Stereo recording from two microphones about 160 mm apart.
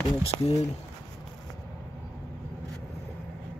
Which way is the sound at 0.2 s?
35° left (ahead or behind).